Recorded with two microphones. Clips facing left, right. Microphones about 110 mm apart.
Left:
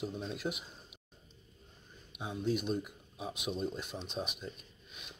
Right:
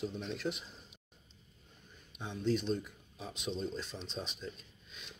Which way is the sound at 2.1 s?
10° left (ahead or behind).